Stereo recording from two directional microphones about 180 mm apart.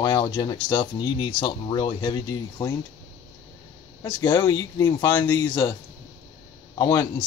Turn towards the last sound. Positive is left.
turn(degrees=25)  # may be behind; listen again after turning